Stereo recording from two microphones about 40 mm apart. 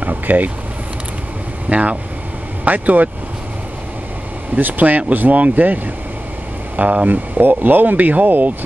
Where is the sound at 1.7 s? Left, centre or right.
Right.